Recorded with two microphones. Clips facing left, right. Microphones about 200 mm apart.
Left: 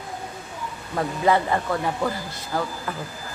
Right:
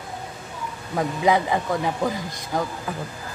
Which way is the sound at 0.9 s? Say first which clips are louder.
Right 1 dB; 10° right (ahead or behind).